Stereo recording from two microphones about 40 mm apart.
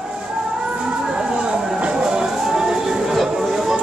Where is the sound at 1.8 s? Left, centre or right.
Right.